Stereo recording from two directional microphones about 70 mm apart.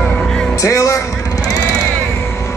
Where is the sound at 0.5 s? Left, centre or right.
Left.